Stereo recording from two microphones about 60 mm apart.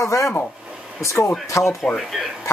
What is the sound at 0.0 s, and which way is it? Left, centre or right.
Speech, left.